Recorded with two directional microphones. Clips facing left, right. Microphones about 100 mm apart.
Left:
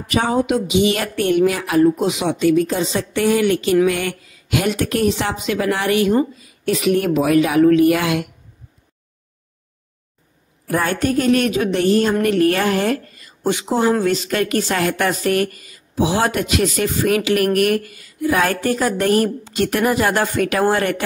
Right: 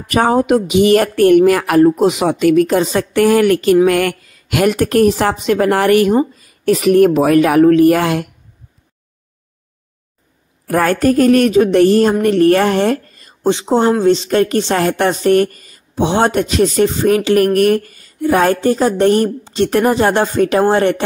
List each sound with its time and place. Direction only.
0.1 s a woman's voice: 45° right (ahead or behind)
1.3 s a woman's voice: 55° right (ahead or behind)
6.3 s a woman's voice: 40° right (ahead or behind)
10.7 s speech: 45° right (ahead or behind)
13.4 s speech: 25° right (ahead or behind)